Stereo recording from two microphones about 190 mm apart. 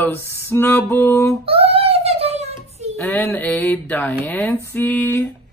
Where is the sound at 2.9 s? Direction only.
10° left (ahead or behind).